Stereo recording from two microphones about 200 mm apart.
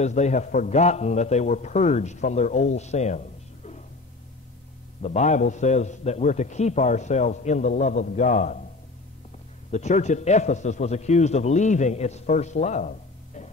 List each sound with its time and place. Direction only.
0.0 s a man's voice: 35° left (ahead or behind)
5.0 s a man's voice: 35° left (ahead or behind)
9.7 s a man's voice: 35° left (ahead or behind)